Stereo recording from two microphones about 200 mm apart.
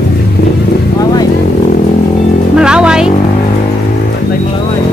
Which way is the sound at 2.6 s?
5° right (ahead or behind).